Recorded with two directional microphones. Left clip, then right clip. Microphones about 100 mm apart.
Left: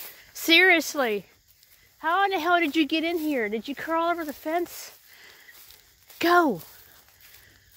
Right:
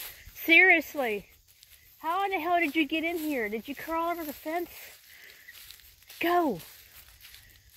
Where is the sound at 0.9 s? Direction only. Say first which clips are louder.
Left 5 dB; 50° left (ahead or behind).